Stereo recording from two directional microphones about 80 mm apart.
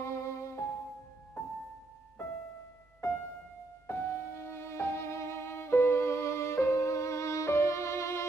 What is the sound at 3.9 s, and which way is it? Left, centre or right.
Music, left.